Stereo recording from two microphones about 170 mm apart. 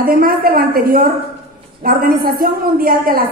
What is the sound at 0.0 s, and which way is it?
A woman's voice, 60° right (ahead or behind).